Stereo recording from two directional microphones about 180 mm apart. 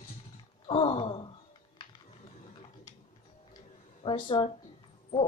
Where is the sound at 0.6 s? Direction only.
30° left (ahead or behind).